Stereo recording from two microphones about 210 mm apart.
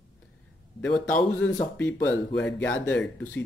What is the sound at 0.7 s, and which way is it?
Speech, 5° left (ahead or behind).